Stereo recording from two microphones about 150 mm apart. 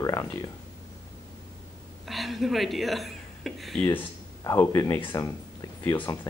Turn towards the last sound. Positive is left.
turn(degrees=20)  # may be behind; listen again after turning